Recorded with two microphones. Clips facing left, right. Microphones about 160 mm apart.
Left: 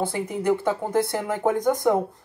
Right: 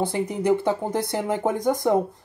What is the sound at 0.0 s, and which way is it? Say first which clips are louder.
Speech: right 1 dB; 20° right (ahead or behind).